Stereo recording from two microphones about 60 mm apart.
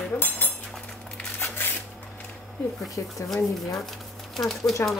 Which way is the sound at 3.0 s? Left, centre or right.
Left.